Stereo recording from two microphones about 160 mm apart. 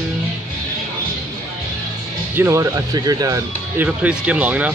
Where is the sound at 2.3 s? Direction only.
20° right (ahead or behind).